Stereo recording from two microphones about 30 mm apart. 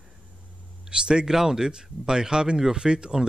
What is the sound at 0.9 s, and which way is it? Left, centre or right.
Speech, right.